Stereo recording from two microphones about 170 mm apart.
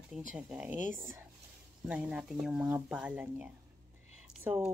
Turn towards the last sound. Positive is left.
turn(degrees=-10)  # may be behind; listen again after turning